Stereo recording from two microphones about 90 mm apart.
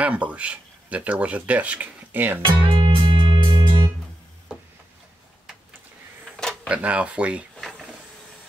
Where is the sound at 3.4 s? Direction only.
60° right (ahead or behind).